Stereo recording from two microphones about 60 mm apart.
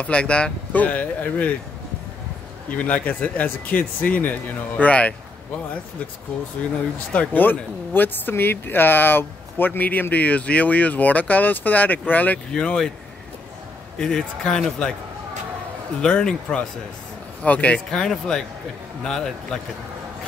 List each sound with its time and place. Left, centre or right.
0.0 s speech: centre
2.8 s speech: left
7.1 s speech: left
12.5 s a man's voice: centre
13.9 s a man's voice: centre
16.0 s a man's voice: centre
17.9 s a man's voice: centre